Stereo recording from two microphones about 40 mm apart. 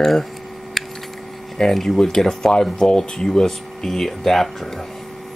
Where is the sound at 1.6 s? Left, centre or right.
Centre.